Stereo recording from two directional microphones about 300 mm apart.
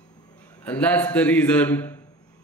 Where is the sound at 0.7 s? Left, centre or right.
Centre.